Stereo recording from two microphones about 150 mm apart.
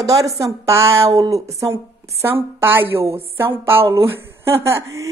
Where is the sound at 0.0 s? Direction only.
20° right (ahead or behind).